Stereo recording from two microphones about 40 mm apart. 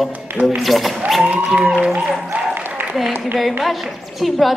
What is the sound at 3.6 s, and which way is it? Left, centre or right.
Speech, centre.